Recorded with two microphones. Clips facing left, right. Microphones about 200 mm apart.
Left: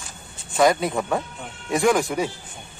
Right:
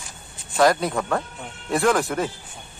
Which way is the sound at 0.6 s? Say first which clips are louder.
Even; centre (ahead or behind).